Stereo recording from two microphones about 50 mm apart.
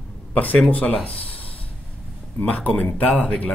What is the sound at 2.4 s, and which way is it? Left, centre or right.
Speech, left.